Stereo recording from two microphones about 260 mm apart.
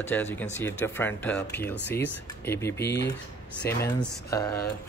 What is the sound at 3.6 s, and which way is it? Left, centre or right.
Speech, centre.